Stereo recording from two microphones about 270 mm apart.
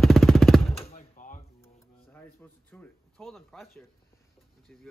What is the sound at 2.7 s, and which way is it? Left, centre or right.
Speech, centre.